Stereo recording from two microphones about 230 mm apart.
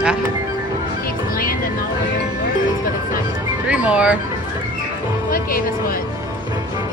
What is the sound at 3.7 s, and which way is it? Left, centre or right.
Music, centre.